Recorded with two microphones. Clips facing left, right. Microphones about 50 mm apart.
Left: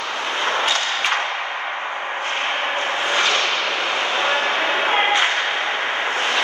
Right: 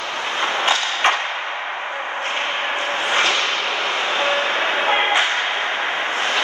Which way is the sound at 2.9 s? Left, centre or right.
Right.